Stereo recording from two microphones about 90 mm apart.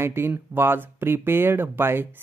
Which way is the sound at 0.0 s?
25° right (ahead or behind).